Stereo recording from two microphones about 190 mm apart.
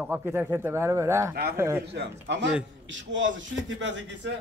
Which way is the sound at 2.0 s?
70° right (ahead or behind).